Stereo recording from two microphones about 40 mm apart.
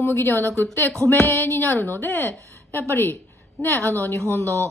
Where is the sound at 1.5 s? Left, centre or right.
Left.